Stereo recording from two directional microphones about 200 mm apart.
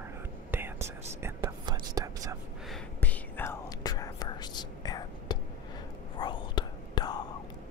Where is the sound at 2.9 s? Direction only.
10° left (ahead or behind).